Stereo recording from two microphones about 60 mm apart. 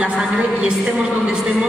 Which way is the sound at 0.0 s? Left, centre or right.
Centre.